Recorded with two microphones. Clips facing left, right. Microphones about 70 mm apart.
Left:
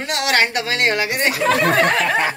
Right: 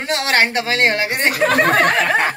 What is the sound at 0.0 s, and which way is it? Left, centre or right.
A woman's voice, right.